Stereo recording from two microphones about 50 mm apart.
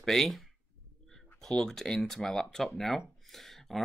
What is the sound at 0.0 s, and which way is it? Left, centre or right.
Speech, centre.